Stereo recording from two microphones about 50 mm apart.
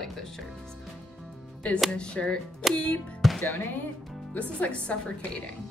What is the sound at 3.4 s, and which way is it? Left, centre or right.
Speech, left.